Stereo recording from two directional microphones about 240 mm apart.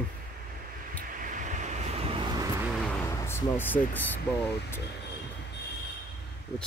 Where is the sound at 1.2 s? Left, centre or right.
Right.